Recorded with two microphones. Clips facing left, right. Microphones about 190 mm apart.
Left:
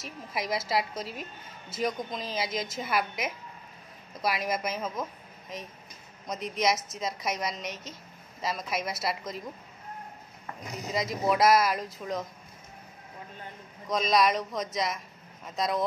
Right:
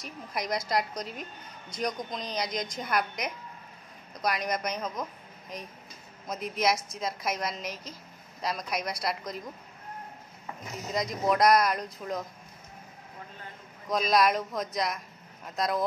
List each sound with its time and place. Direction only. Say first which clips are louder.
0.0 s a woman's voice: even; 5° left (ahead or behind)
10.9 s a woman's voice: even; 5° left (ahead or behind)
13.8 s a woman's voice: even; centre (ahead or behind)